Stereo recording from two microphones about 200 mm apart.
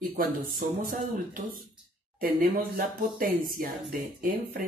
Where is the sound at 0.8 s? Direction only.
45° right (ahead or behind).